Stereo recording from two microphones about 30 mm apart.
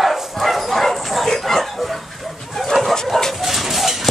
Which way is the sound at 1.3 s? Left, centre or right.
Centre.